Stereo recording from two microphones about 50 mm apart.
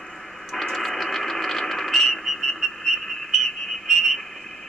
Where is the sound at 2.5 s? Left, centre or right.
Centre.